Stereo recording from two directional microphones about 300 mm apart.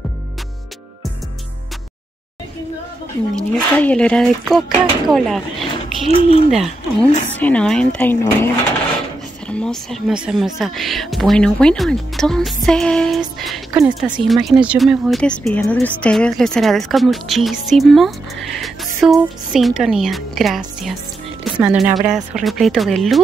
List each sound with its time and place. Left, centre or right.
3.5 s speech: centre
6.1 s speech: centre
6.5 s speech: centre
9.5 s speech: centre